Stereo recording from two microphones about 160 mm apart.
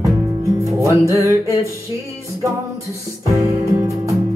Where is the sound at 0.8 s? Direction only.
20° right (ahead or behind).